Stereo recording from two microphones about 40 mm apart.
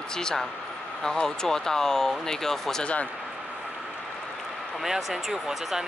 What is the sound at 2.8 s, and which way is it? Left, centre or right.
Speech, left.